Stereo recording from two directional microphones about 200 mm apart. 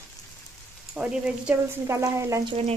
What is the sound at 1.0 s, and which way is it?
Speech, 5° right (ahead or behind).